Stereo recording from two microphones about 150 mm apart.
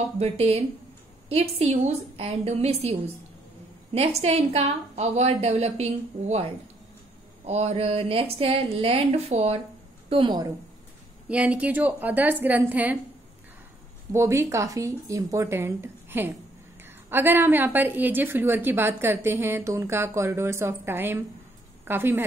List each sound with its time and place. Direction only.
0.2 s a woman's voice: 45° right (ahead or behind)
7.4 s a woman's voice: 45° right (ahead or behind)
10.0 s a woman's voice: 35° right (ahead or behind)
11.2 s a woman's voice: 10° right (ahead or behind)
14.1 s a woman's voice: 20° right (ahead or behind)